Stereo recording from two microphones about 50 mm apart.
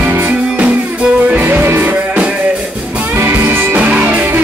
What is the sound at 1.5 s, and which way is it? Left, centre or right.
Music, right.